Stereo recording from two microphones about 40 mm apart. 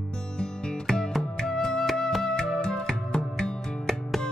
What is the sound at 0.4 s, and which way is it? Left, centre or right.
Music, centre.